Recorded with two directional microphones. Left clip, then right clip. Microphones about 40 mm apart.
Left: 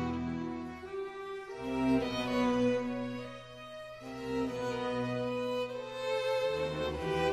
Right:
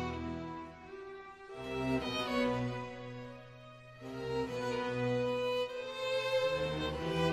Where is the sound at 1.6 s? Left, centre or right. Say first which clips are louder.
Left 4 dB; right.